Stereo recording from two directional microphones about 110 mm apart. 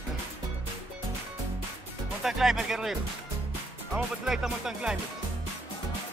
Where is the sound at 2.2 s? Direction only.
5° right (ahead or behind).